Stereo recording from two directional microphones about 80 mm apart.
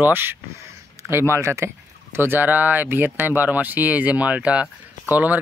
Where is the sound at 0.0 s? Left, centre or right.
Right.